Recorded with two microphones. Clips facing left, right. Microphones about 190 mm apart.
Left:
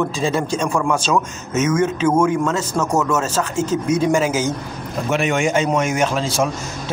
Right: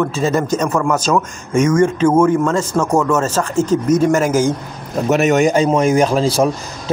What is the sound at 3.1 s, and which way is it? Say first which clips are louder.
Speech: right 4 dB; 10° left (ahead or behind).